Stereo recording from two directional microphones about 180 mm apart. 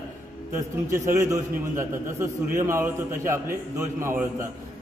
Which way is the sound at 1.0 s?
15° right (ahead or behind).